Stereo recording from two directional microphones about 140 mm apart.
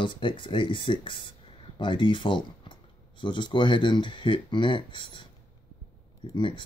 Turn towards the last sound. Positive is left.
turn(degrees=35)  # may be behind; listen again after turning